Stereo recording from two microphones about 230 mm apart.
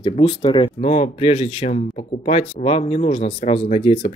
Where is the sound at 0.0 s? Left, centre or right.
Left.